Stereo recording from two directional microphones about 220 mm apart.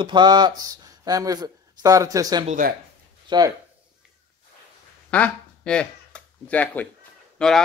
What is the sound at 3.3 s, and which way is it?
Speech, 20° right (ahead or behind).